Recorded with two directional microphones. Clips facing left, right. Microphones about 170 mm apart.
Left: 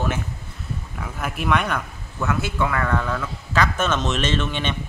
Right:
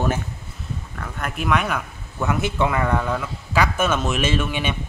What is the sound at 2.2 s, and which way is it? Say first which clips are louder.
A man's voice: right 2 dB; 20° right (ahead or behind).